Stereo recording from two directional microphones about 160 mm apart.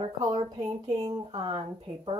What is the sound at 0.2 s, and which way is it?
Speech, 25° right (ahead or behind).